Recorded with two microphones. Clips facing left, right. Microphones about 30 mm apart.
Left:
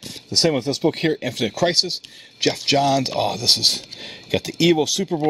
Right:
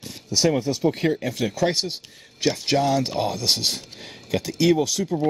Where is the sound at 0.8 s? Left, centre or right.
Left.